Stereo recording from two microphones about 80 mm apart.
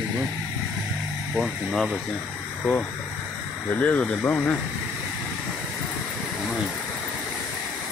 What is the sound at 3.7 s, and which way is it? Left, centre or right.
Speech, centre.